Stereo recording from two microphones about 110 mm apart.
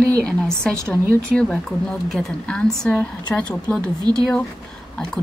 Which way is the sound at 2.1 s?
10° left (ahead or behind).